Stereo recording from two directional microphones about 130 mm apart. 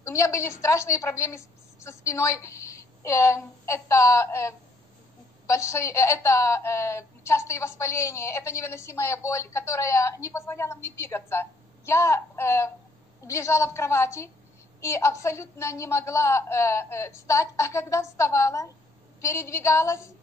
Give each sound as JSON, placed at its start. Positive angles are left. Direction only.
{"t": 0.0, "sound": "a woman's voice", "side_deg": 20}